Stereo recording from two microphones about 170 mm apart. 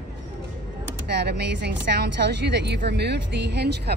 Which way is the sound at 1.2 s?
80° right.